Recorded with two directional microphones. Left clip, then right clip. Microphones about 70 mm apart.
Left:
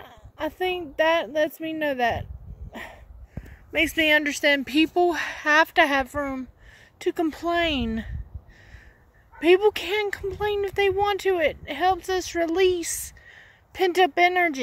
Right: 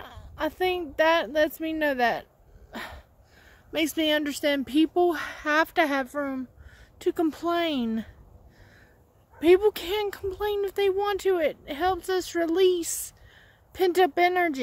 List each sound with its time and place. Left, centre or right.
0.0 s speech: right
2.7 s dog: right
4.1 s speech: right
9.4 s speech: right